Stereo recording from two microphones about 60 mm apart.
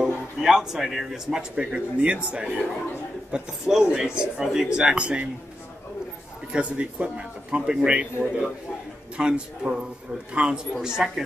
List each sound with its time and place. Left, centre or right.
0.0 s speech: centre
3.3 s speech: centre
6.5 s speech: centre